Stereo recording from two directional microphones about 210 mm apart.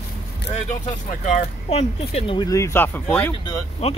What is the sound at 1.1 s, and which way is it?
Speech, 35° left (ahead or behind).